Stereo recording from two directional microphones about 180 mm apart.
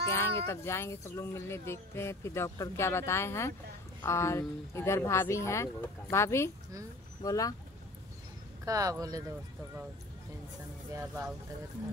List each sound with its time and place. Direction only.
0.1 s speech: 15° left (ahead or behind)
8.6 s speech: 20° right (ahead or behind)
11.0 s speech: 15° right (ahead or behind)